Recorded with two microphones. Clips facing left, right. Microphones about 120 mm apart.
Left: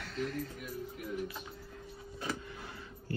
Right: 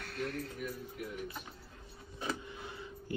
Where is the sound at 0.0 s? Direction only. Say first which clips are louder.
Left 2 dB; 60° right (ahead or behind).